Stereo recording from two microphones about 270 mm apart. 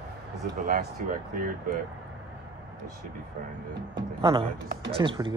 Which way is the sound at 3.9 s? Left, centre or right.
Centre.